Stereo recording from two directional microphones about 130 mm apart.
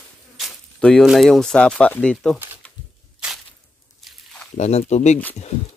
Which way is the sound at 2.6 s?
10° left (ahead or behind).